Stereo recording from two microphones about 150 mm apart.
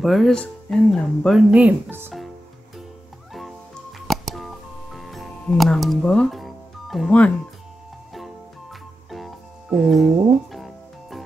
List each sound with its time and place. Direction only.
0.0 s speech: centre (ahead or behind)
1.5 s speech: 10° right (ahead or behind)
4.1 s music: centre (ahead or behind)
9.1 s music: centre (ahead or behind)